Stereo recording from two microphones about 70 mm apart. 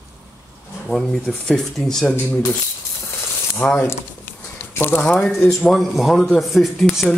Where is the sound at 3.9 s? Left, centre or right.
Left.